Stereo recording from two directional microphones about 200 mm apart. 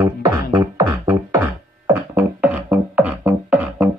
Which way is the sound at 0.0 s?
15° right (ahead or behind).